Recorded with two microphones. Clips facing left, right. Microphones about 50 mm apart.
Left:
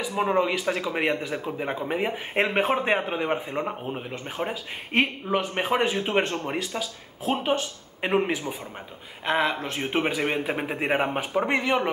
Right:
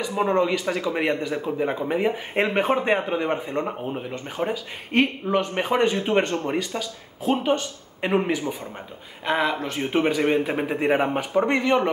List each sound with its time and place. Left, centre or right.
0.0 s speech: centre
9.2 s speech: centre